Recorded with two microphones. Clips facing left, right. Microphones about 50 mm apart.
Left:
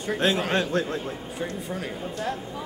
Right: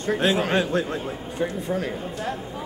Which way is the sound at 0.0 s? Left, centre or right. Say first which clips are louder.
Right 2 dB; centre.